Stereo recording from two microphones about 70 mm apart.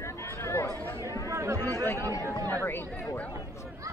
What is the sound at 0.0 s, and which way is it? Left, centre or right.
Chatter, left.